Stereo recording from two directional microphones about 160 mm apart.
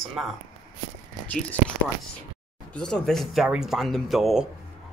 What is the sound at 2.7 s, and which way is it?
Speech, 5° left (ahead or behind).